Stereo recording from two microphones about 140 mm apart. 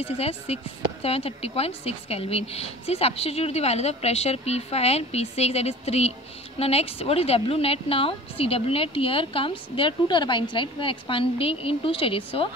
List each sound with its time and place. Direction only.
0.0 s a woman's voice: 45° left (ahead or behind)